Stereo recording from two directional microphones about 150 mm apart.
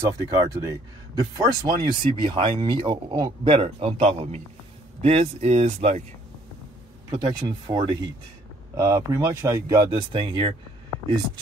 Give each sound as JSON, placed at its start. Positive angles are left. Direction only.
{"t": 0.2, "sound": "speech", "side_deg": -25}
{"t": 3.5, "sound": "speech", "side_deg": -40}
{"t": 7.1, "sound": "speech", "side_deg": -30}
{"t": 9.8, "sound": "speech", "side_deg": -35}